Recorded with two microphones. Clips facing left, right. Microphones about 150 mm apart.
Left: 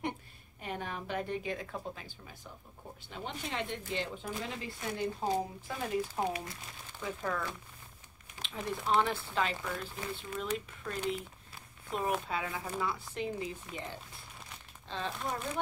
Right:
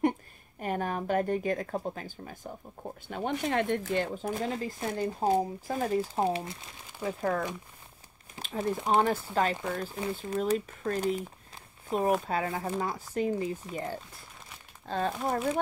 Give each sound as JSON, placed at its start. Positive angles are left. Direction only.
{"t": 0.6, "sound": "speech", "side_deg": -50}